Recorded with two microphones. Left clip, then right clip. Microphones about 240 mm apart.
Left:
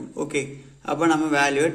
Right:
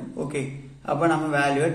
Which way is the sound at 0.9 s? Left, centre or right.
Left.